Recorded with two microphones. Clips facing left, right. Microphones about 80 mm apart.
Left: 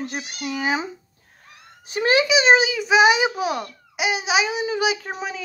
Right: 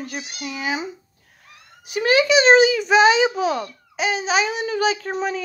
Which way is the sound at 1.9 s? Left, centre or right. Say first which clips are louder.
Right 1 dB; left.